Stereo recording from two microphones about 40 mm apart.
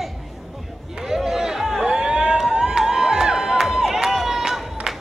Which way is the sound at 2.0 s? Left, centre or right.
Centre.